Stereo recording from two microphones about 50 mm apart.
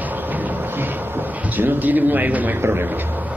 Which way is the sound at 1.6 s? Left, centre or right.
Right.